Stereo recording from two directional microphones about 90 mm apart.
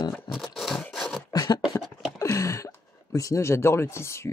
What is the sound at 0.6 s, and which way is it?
Wood, centre (ahead or behind).